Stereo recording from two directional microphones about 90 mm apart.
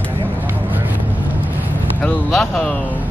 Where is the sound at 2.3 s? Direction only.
10° left (ahead or behind).